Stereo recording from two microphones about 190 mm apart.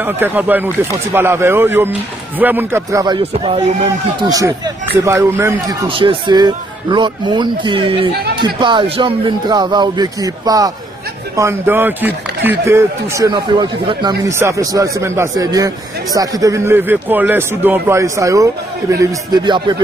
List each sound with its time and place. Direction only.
0.0 s speech: 10° right (ahead or behind)
5.9 s speech: 25° right (ahead or behind)